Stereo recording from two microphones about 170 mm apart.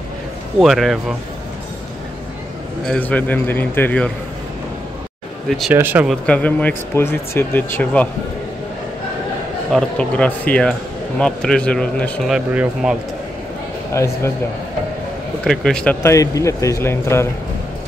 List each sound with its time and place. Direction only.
0.6 s speech: centre (ahead or behind)
2.8 s speech: 5° left (ahead or behind)
5.5 s speech: centre (ahead or behind)
5.8 s speech: 10° right (ahead or behind)
6.2 s speech: 10° left (ahead or behind)
9.7 s speech: 5° left (ahead or behind)
13.9 s speech: 15° left (ahead or behind)
15.4 s speech: 5° left (ahead or behind)
16.0 s speech: 20° left (ahead or behind)